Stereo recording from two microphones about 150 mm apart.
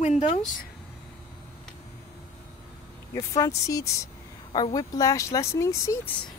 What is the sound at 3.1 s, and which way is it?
Speech, 20° left (ahead or behind).